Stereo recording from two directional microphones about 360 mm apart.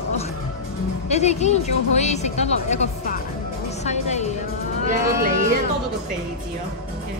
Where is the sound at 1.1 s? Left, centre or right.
Centre.